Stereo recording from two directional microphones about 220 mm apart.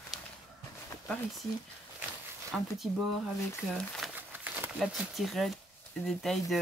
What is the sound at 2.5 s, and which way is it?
Speech, centre (ahead or behind).